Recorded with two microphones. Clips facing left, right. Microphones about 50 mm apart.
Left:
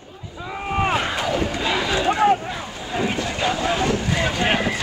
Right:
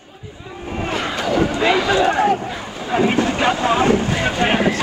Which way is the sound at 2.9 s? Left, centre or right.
Right.